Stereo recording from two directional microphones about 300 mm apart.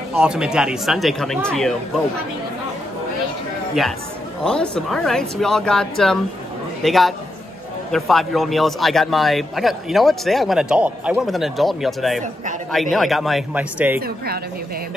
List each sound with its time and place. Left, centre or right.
0.1 s speech: centre
4.5 s speech: centre
14.0 s a woman's voice: right